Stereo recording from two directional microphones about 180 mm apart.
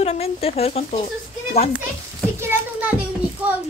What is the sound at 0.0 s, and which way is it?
Speech, 35° left (ahead or behind).